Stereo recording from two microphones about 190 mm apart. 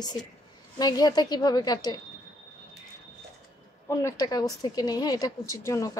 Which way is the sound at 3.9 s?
15° left (ahead or behind).